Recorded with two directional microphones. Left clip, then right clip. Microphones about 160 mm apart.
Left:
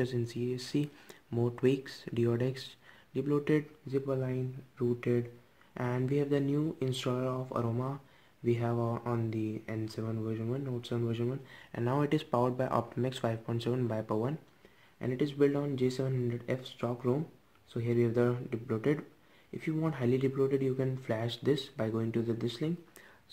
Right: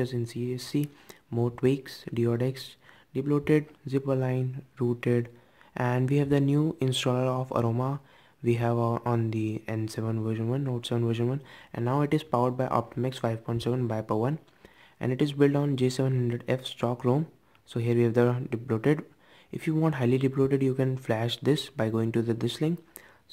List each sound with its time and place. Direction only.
0.0 s speech: 20° right (ahead or behind); by 22.8 s 40° right (ahead or behind)